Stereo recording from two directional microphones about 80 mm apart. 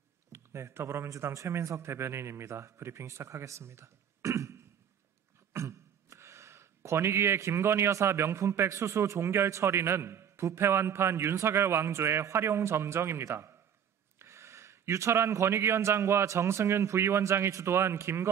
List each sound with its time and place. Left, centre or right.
0.3 s speech: right